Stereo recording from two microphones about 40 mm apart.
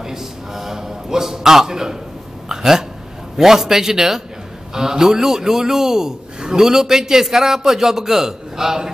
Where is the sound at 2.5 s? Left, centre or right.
Centre.